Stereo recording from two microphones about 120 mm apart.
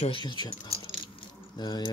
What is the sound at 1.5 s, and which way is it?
Keys jangling, 40° left (ahead or behind).